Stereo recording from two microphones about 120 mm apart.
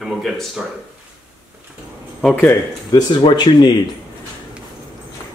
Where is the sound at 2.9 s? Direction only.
40° left (ahead or behind).